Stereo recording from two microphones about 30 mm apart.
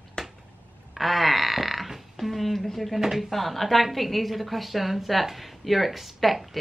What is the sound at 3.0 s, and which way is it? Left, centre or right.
Speech, centre.